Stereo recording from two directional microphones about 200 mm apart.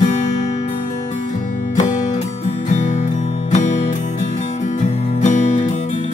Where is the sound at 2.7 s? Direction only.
35° left (ahead or behind).